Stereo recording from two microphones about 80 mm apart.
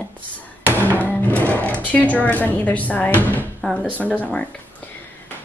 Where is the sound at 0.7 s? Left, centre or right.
Left.